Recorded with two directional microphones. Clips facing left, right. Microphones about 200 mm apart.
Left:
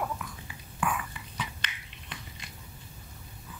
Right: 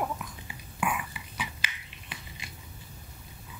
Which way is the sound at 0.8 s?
10° right (ahead or behind).